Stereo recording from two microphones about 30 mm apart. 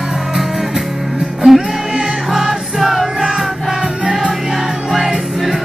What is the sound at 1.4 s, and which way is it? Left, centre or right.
Music, right.